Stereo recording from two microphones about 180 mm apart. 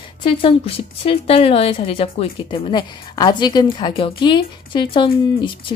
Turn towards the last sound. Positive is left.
turn(degrees=25)  # may be behind; listen again after turning